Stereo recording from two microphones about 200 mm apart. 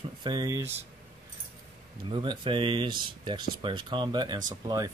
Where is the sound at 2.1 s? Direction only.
25° right (ahead or behind).